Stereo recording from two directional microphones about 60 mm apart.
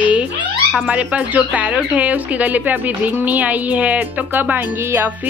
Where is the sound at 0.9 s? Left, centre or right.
Right.